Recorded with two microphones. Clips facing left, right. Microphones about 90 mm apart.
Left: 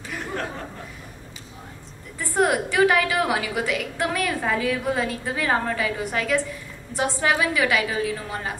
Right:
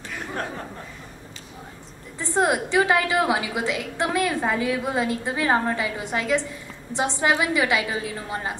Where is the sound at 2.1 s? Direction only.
25° right (ahead or behind).